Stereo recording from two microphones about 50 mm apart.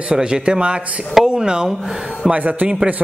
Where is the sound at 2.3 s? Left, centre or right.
Right.